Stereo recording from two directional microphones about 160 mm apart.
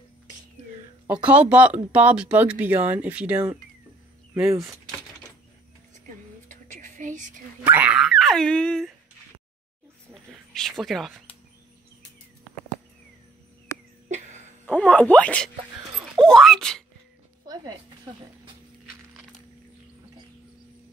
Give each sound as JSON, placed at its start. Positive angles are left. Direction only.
{"t": 1.0, "sound": "speech", "side_deg": -10}
{"t": 6.0, "sound": "a sound", "side_deg": -55}
{"t": 7.6, "sound": "dog", "side_deg": -10}
{"t": 10.5, "sound": "speech", "side_deg": 0}
{"t": 14.0, "sound": "cough", "side_deg": -50}
{"t": 14.7, "sound": "speech", "side_deg": 10}
{"t": 16.3, "sound": "dog", "side_deg": 0}